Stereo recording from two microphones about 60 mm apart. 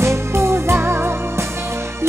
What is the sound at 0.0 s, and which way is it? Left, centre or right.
Music, right.